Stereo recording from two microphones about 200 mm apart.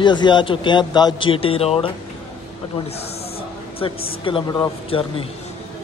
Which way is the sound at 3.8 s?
25° left (ahead or behind).